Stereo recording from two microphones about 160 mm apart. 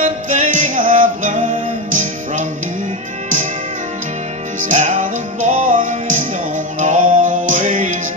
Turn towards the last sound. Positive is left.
turn(degrees=-55)  # may be behind; listen again after turning